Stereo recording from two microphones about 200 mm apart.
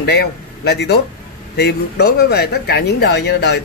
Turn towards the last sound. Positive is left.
turn(degrees=55)  # may be behind; listen again after turning